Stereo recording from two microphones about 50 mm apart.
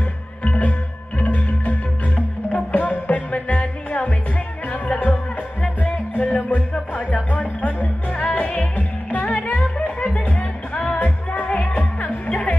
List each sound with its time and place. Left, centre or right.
0.4 s music: left